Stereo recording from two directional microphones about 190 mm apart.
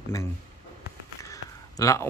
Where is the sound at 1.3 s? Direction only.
15° left (ahead or behind).